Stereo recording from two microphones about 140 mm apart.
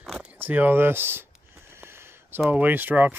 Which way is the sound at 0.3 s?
10° right (ahead or behind).